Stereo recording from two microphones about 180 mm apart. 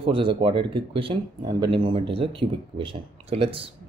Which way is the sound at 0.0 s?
30° right (ahead or behind).